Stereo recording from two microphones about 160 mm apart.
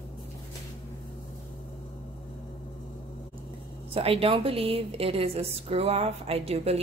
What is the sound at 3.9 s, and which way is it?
A woman's voice, 35° right (ahead or behind).